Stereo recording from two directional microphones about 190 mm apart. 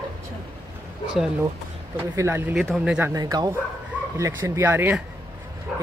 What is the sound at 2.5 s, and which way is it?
Speech, centre (ahead or behind).